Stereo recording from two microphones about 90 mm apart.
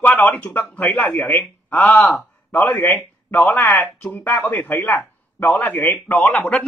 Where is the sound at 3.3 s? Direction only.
30° left (ahead or behind).